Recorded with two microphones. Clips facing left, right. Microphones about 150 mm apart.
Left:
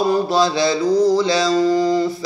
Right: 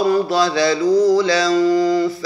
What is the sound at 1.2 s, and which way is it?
Mantra, 25° left (ahead or behind).